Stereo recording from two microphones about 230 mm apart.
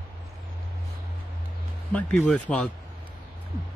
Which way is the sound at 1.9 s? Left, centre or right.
Centre.